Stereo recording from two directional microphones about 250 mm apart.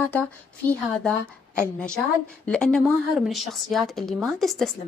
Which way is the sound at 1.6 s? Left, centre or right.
Centre.